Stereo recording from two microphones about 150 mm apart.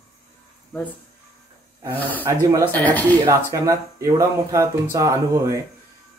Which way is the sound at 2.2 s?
20° right (ahead or behind).